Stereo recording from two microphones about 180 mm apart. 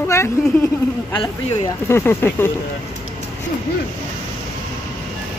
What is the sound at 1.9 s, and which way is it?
Speech, 10° left (ahead or behind).